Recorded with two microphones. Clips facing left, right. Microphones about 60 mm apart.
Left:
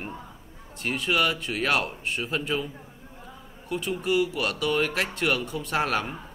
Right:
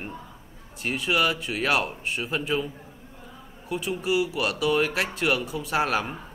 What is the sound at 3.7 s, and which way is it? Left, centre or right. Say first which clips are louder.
A man's voice: even; centre.